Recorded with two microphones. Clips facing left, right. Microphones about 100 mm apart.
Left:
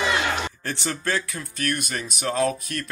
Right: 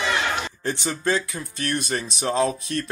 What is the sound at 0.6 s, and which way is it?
Speech, 20° right (ahead or behind).